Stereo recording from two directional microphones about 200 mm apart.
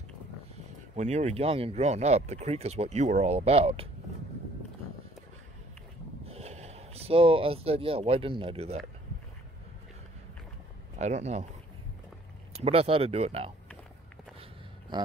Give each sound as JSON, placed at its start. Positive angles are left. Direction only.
{"t": 0.9, "sound": "speech", "side_deg": -35}
{"t": 6.2, "sound": "speech", "side_deg": -30}
{"t": 11.0, "sound": "speech", "side_deg": -35}
{"t": 12.5, "sound": "speech", "side_deg": -30}